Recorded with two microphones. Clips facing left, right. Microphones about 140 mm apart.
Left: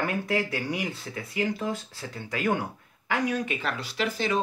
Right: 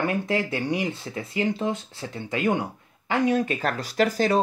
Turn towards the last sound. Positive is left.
turn(degrees=-45)  # may be behind; listen again after turning